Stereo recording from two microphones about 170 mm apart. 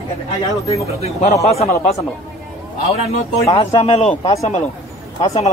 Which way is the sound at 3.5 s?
35° left (ahead or behind).